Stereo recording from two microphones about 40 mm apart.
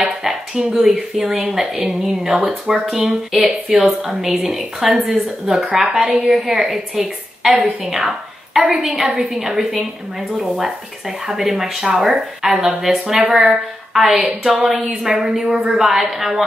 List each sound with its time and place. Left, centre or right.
0.6 s a woman's voice: centre
14.7 s speech: centre